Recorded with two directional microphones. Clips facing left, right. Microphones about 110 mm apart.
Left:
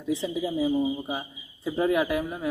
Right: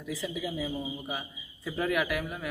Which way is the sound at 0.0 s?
30° left (ahead or behind).